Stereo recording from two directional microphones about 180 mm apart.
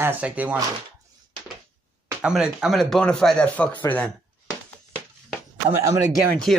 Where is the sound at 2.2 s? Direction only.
5° right (ahead or behind).